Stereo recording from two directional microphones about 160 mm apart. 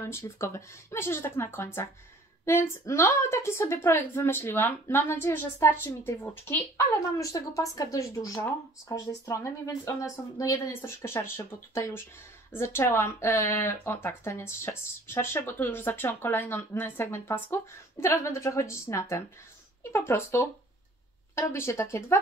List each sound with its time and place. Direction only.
0.0 s a woman's voice: 15° left (ahead or behind)